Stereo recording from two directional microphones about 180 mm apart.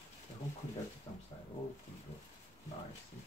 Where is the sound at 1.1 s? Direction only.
25° left (ahead or behind).